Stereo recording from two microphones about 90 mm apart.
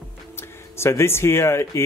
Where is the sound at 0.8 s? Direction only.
30° left (ahead or behind).